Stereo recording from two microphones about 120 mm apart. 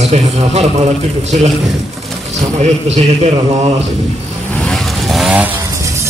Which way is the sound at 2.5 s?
65° right (ahead or behind).